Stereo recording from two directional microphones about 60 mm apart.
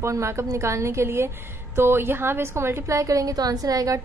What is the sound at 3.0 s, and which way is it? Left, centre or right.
A woman's voice, right.